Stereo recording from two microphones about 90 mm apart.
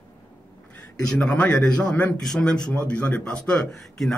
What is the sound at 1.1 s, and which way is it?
Speech, 10° left (ahead or behind).